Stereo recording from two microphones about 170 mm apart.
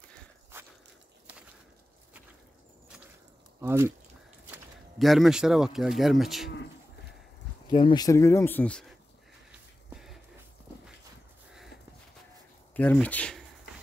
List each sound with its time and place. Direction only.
3.6 s speech: 15° right (ahead or behind)
4.9 s speech: centre (ahead or behind)
7.6 s speech: 25° left (ahead or behind); by 8.8 s 10° left (ahead or behind)
9.5 s a sound: centre (ahead or behind)
12.7 s speech: 10° left (ahead or behind)